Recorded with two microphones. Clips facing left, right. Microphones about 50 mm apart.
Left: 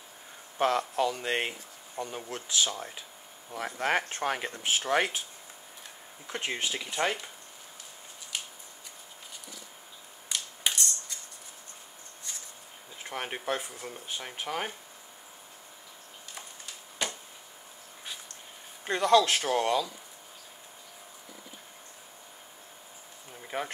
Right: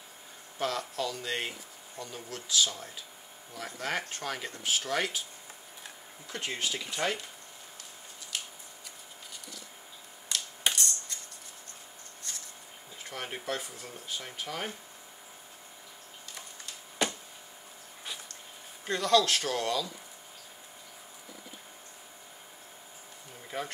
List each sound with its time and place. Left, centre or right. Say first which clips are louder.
0.6 s speech: left 6 dB; left
6.2 s speech: left 2 dB; left
10.3 s computer keyboard: even; centre
10.7 s music: even; centre
13.0 s speech: left 3 dB; left
18.9 s speech: left 3 dB; left
23.5 s speech: left 2 dB; left